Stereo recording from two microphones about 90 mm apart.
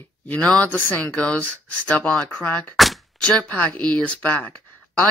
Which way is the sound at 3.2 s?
10° left (ahead or behind).